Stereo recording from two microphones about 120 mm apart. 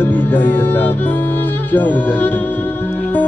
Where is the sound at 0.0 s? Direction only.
15° left (ahead or behind).